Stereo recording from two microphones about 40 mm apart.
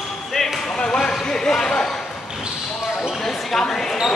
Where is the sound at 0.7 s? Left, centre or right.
Left.